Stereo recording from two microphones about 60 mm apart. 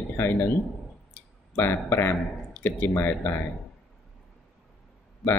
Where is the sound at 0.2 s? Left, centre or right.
Left.